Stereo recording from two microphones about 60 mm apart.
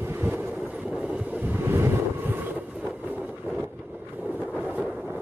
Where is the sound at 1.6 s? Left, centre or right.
Right.